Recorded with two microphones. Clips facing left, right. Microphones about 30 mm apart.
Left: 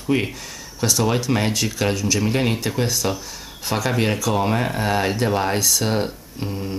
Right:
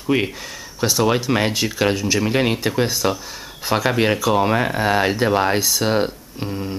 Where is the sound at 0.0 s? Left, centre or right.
Centre.